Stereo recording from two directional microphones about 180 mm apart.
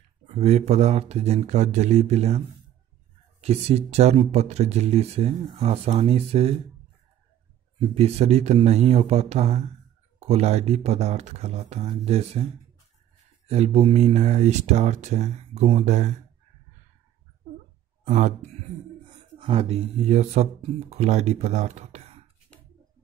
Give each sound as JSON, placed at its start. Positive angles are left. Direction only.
{"t": 0.3, "sound": "speech", "side_deg": -35}
{"t": 7.9, "sound": "speech", "side_deg": -35}
{"t": 13.5, "sound": "speech", "side_deg": -35}
{"t": 18.0, "sound": "speech", "side_deg": -40}